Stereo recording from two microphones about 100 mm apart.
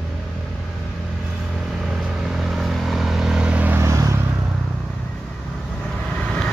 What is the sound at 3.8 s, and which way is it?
Vehicle, 30° right (ahead or behind).